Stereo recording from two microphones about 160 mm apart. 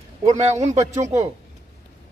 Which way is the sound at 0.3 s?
45° right (ahead or behind).